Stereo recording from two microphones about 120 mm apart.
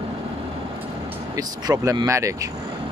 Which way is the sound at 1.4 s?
35° right (ahead or behind).